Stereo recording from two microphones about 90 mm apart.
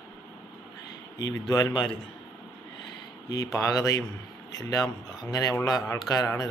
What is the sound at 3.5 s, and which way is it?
A man's voice, 35° left (ahead or behind).